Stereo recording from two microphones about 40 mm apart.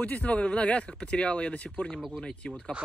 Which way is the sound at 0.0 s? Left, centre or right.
Left.